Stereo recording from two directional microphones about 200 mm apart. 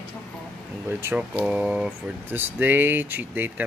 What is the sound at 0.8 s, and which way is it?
Speech, 10° right (ahead or behind).